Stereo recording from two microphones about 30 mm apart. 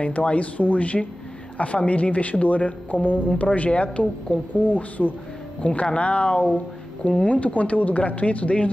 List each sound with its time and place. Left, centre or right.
0.0 s speech: left
2.4 s a woman's voice: left
4.6 s speech: left
5.6 s speech: left